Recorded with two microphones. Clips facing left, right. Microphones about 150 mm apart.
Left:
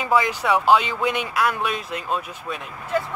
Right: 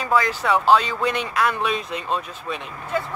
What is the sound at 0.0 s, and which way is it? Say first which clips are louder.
Speech: even; 15° left (ahead or behind).